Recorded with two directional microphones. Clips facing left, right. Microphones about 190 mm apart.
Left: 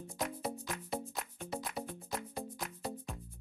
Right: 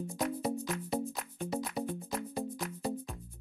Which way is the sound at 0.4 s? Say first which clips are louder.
Right 6 dB; centre (ahead or behind).